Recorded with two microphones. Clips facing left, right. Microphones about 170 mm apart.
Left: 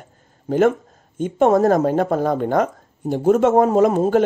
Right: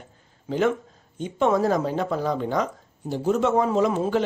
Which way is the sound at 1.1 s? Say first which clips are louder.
Left 6 dB; 50° left (ahead or behind).